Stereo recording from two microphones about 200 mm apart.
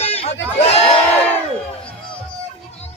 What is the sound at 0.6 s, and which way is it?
Crowd, 30° left (ahead or behind).